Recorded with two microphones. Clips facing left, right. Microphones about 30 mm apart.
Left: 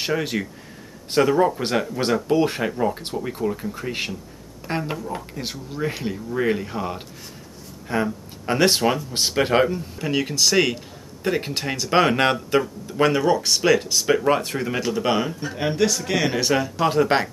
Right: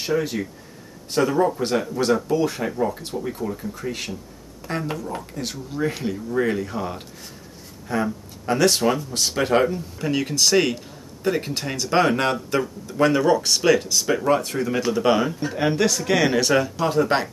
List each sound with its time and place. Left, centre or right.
0.0 s speech: left
1.1 s speech: left
3.2 s speech: left
4.8 s speech: centre
11.2 s speech: centre
14.0 s speech: left
14.8 s speech: centre
16.7 s speech: left